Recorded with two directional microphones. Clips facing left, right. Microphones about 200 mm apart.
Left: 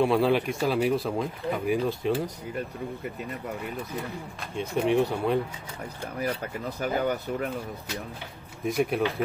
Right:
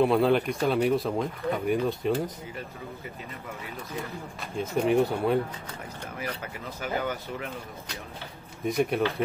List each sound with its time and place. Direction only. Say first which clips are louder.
0.0 s speech: right 1 dB; centre (ahead or behind)
4.4 s speech: right 1 dB; centre (ahead or behind)
6.8 s speech: left 3 dB; 40° left (ahead or behind)
8.6 s speech: even; centre (ahead or behind)